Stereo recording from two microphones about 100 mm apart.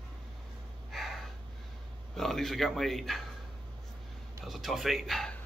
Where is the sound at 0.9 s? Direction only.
Centre (ahead or behind).